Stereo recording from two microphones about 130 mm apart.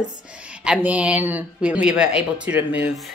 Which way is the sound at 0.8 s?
10° right (ahead or behind).